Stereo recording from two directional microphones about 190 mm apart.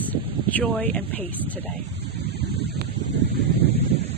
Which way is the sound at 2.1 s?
60° right (ahead or behind).